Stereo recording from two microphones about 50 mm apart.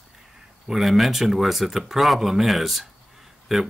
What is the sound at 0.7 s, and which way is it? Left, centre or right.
Speech, centre.